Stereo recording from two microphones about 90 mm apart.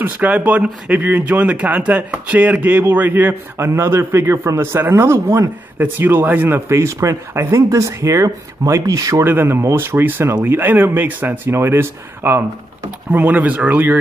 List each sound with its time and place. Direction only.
0.0 s speech: 20° right (ahead or behind); by 9.2 s 40° right (ahead or behind)
9.2 s speech: 25° right (ahead or behind)